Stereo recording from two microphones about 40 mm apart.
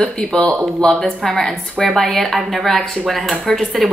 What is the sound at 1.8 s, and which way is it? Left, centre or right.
Speech, left.